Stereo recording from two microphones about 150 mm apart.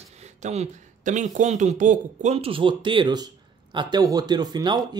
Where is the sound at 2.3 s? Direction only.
40° right (ahead or behind).